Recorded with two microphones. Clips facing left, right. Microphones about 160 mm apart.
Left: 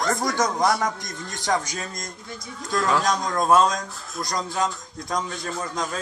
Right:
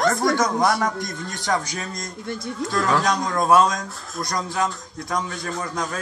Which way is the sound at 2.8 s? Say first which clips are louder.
Right 1 dB; centre (ahead or behind).